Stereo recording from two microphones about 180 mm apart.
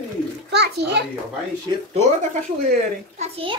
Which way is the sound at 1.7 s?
25° right (ahead or behind).